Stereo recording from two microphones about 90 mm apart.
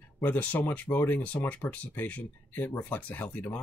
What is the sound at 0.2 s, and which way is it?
Speech, 15° left (ahead or behind).